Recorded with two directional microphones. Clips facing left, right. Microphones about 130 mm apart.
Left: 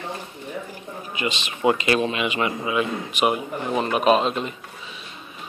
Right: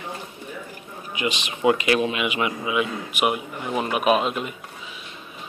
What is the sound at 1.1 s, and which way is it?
Speech, 15° right (ahead or behind).